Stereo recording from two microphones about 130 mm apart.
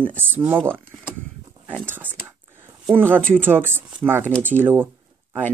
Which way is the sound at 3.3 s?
15° right (ahead or behind).